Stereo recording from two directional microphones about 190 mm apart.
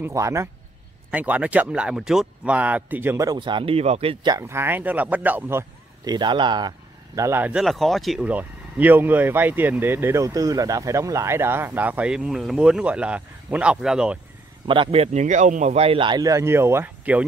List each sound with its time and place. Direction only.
0.0 s speech: 15° right (ahead or behind)
14.7 s a man's voice: 30° right (ahead or behind); by 17.2 s 10° right (ahead or behind)